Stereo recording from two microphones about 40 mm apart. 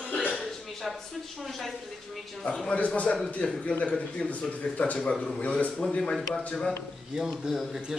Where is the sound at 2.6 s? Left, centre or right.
Left.